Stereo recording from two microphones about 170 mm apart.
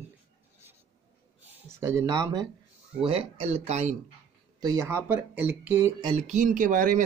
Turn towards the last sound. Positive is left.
turn(degrees=-50)  # may be behind; listen again after turning